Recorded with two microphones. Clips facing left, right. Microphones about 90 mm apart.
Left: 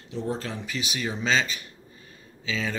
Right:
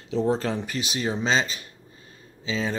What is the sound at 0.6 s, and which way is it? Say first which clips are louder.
Speech: right 3 dB; 40° right (ahead or behind).